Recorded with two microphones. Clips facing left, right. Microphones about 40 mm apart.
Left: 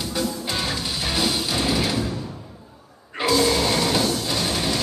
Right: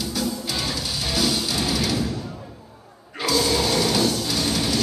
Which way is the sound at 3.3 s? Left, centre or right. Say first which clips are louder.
Left 2 dB; centre.